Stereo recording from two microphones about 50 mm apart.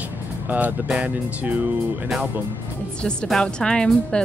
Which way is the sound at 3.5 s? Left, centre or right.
Centre.